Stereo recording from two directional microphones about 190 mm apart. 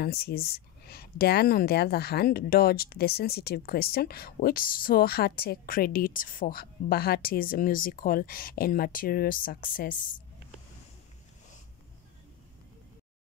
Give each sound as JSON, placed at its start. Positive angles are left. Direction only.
{"t": 0.0, "sound": "speech", "side_deg": 55}